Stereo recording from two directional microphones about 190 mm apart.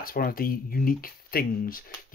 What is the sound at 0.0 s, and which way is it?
Speech, 50° left (ahead or behind).